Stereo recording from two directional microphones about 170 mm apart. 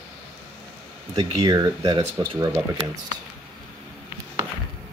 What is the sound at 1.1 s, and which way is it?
Speech, 25° right (ahead or behind).